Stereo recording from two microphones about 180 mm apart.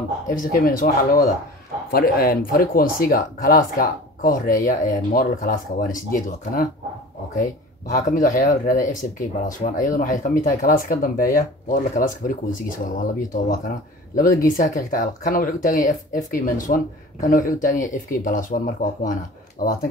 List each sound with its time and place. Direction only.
0.3 s speech: 50° left (ahead or behind)
7.9 s speech: 50° left (ahead or behind)